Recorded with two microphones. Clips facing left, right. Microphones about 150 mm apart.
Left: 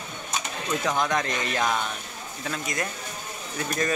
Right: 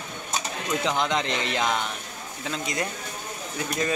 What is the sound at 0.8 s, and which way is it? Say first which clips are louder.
Speech: even; 20° right (ahead or behind).